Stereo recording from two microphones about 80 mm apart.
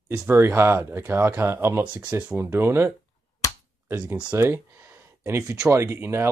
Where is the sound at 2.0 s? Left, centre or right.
Centre.